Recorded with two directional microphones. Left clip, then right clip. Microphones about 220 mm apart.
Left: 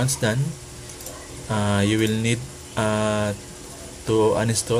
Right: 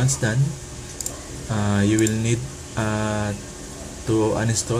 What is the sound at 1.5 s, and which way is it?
Speech, 20° left (ahead or behind).